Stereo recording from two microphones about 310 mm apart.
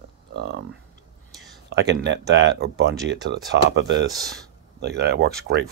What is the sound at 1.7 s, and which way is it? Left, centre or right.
Speech, right.